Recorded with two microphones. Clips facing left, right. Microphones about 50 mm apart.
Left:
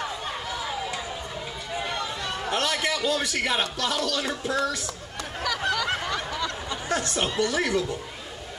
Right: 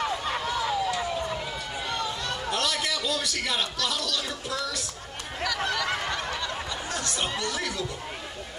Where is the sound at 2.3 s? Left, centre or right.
Left.